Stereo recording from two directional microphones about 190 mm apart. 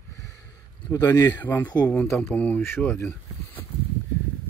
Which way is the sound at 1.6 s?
20° left (ahead or behind).